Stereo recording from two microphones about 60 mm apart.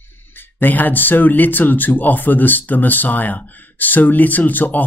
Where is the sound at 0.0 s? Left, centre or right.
Left.